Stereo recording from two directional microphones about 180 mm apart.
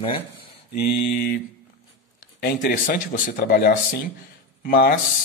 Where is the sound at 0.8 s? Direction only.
60° left (ahead or behind).